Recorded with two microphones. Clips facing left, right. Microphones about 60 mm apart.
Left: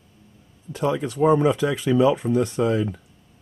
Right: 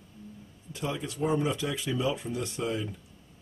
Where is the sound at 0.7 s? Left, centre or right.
Left.